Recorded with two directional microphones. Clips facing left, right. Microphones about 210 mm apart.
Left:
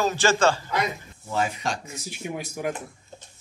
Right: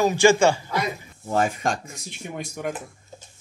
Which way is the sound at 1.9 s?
5° left (ahead or behind).